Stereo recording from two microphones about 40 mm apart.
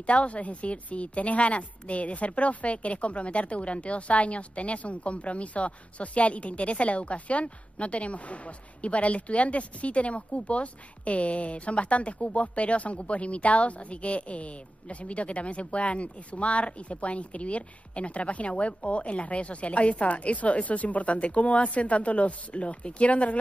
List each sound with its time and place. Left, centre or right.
0.0 s speech: left